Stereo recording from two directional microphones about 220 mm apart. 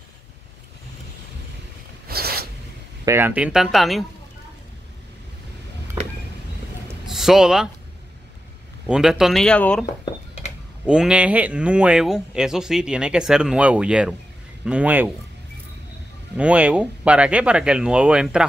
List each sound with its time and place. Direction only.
2.0 s zipper: 45° right (ahead or behind)
3.1 s speech: 10° right (ahead or behind)
7.1 s speech: centre (ahead or behind)
8.8 s speech: 5° right (ahead or behind)
10.9 s speech: 5° right (ahead or behind)
16.3 s speech: 5° right (ahead or behind)